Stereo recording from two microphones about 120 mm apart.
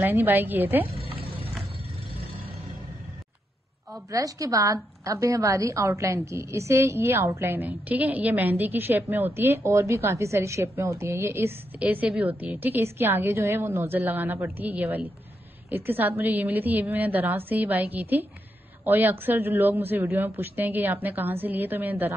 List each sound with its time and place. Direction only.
0.0 s a man's voice: 15° right (ahead or behind)
0.9 s music: 50° right (ahead or behind)
4.1 s a woman's voice: 30° right (ahead or behind)